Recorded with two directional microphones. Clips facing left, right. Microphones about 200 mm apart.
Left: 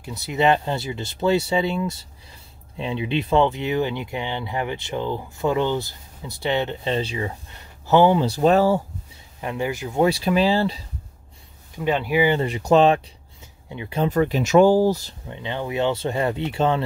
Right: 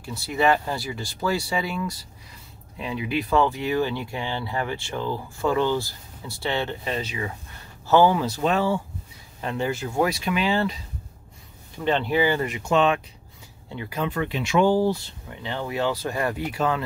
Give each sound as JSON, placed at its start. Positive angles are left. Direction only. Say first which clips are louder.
{"t": 0.0, "sound": "speech", "louder": "left 2 dB", "side_deg": 20}
{"t": 7.8, "sound": "speech", "louder": "left 2 dB", "side_deg": 20}
{"t": 9.4, "sound": "speech", "louder": "left 1 dB", "side_deg": 15}
{"t": 10.0, "sound": "speech", "louder": "left 8 dB", "side_deg": 35}
{"t": 11.7, "sound": "speech", "louder": "left 1 dB", "side_deg": 10}
{"t": 12.4, "sound": "speech", "louder": "left 5 dB", "side_deg": 35}
{"t": 13.7, "sound": "speech", "louder": "left 1 dB", "side_deg": 15}
{"t": 14.0, "sound": "speech", "louder": "left 7 dB", "side_deg": 40}
{"t": 15.2, "sound": "speech", "louder": "left 2 dB", "side_deg": 20}